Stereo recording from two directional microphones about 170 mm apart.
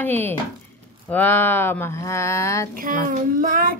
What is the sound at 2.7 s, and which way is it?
Speech, 55° right (ahead or behind).